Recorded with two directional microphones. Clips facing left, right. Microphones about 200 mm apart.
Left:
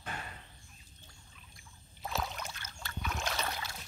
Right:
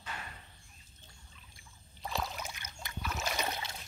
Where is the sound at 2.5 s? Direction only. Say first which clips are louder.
Even; 15° right (ahead or behind).